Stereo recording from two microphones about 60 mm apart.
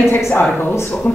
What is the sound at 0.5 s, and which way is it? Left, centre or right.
Speech, left.